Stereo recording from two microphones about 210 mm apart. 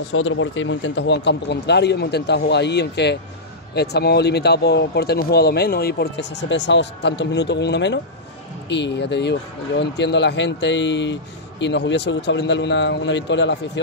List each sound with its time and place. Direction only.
0.1 s speech: 70° left (ahead or behind)